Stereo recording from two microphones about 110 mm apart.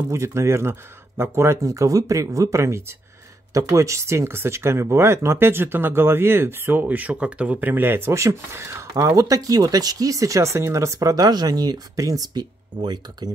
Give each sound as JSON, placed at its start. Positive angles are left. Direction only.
{"t": 0.1, "sound": "speech", "side_deg": -25}